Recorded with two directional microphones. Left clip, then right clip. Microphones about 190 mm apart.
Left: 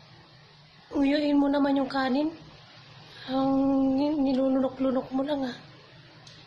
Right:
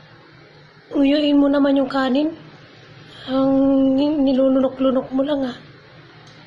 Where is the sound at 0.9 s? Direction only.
5° left (ahead or behind).